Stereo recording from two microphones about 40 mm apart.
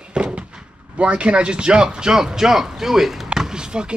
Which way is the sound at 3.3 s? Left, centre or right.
Centre.